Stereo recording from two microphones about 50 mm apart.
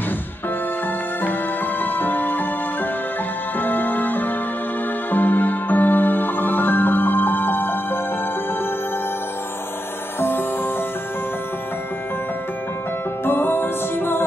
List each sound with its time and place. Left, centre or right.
1.8 s music: left
13.2 s music: left